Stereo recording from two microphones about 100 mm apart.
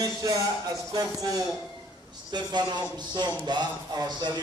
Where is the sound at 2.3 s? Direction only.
45° right (ahead or behind).